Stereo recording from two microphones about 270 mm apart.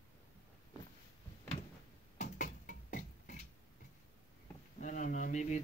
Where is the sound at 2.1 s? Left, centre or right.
Left.